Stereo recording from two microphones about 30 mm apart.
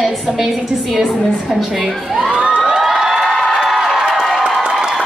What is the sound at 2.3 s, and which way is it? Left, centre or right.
Crowd, right.